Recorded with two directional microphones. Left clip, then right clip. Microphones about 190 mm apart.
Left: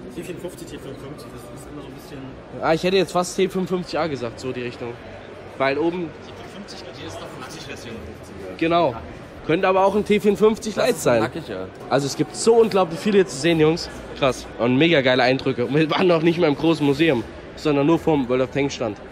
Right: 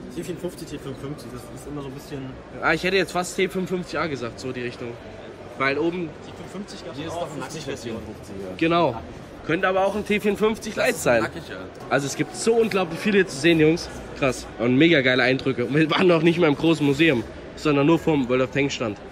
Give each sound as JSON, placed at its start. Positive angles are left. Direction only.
{"t": 2.6, "sound": "a man's voice", "side_deg": 25}
{"t": 8.5, "sound": "a man's voice", "side_deg": 0}
{"t": 9.5, "sound": "a man's voice", "side_deg": 20}
{"t": 10.0, "sound": "a man's voice", "side_deg": 35}
{"t": 11.1, "sound": "a man's voice", "side_deg": 45}
{"t": 12.2, "sound": "a man's voice", "side_deg": 15}